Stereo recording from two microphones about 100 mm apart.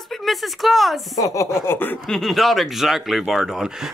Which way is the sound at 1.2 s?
30° left (ahead or behind).